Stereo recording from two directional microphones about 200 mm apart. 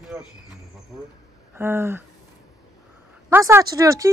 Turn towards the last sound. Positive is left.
turn(degrees=-15)  # may be behind; listen again after turning